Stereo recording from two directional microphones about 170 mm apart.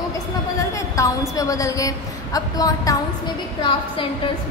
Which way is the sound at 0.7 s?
20° left (ahead or behind).